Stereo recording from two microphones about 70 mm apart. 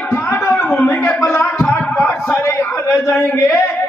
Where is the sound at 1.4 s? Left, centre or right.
Centre.